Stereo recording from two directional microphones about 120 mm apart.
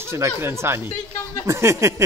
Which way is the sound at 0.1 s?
20° right (ahead or behind).